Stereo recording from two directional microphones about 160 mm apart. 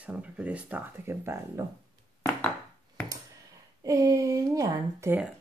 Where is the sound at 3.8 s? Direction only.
20° right (ahead or behind).